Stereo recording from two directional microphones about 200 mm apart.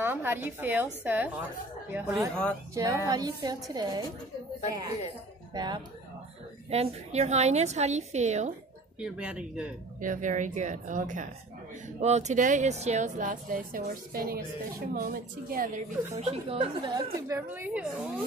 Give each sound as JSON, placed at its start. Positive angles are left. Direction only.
{"t": 0.0, "sound": "a woman's voice", "side_deg": -10}
{"t": 2.7, "sound": "a woman's voice", "side_deg": -15}
{"t": 5.5, "sound": "speech", "side_deg": -20}
{"t": 6.7, "sound": "speech", "side_deg": -30}
{"t": 9.0, "sound": "speech", "side_deg": -5}
{"t": 9.9, "sound": "speech", "side_deg": -40}
{"t": 16.8, "sound": "a woman's voice", "side_deg": -15}